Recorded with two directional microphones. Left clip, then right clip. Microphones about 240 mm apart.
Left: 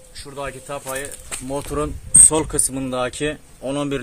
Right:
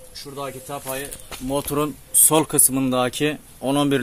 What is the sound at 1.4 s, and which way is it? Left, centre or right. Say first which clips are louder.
Speech: right 2 dB; right.